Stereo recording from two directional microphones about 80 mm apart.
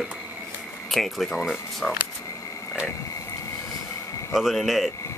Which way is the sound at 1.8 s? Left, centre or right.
Centre.